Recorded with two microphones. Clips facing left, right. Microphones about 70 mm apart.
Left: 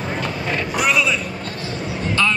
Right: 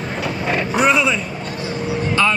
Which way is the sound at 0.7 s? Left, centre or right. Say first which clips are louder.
Right 3 dB; right.